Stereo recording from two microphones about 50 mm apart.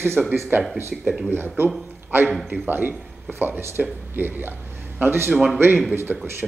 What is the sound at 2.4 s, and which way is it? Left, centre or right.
A man's voice, right.